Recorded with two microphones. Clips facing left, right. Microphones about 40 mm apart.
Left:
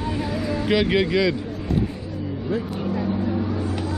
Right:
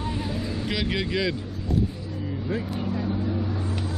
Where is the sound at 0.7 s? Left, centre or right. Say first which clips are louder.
Left 9 dB; centre.